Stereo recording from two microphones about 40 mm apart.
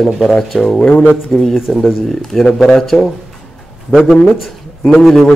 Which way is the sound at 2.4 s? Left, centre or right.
Centre.